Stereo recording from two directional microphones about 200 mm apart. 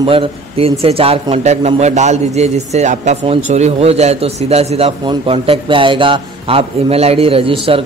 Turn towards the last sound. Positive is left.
turn(degrees=-25)  # may be behind; listen again after turning